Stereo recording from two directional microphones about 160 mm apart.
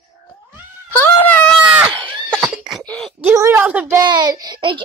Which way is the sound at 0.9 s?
10° left (ahead or behind).